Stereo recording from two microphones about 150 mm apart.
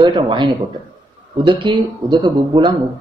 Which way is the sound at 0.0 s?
30° right (ahead or behind).